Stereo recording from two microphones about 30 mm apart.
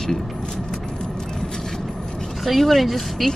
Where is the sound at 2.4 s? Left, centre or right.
Centre.